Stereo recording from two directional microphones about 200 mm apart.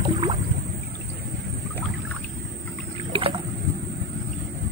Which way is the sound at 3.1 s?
25° right (ahead or behind).